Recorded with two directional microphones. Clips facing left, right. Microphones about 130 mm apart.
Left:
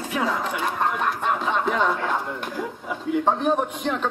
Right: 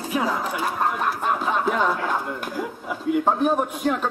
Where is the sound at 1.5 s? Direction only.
5° right (ahead or behind).